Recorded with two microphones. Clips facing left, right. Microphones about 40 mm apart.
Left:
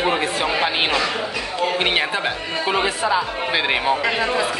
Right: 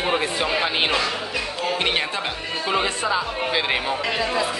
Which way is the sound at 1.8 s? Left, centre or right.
Centre.